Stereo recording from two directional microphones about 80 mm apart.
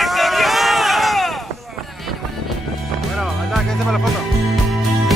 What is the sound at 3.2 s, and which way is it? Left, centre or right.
Music, centre.